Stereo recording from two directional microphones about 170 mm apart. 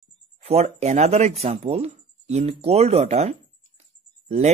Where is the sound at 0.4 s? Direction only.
35° right (ahead or behind).